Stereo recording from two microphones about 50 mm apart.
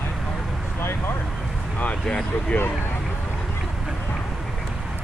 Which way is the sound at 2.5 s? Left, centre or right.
Left.